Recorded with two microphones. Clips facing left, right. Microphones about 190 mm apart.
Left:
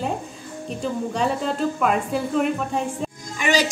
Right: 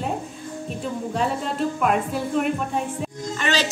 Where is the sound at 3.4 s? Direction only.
10° left (ahead or behind).